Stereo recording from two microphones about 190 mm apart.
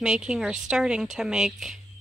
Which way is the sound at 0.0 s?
5° right (ahead or behind).